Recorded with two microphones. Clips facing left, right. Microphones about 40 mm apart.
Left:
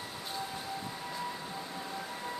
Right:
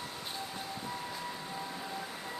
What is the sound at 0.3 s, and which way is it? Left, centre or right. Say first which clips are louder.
Siren: left 4 dB; centre.